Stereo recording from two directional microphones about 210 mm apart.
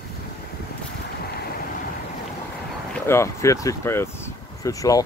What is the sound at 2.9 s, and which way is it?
Speech, 10° left (ahead or behind).